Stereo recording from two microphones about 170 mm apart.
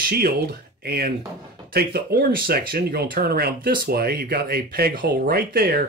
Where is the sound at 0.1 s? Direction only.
65° right (ahead or behind).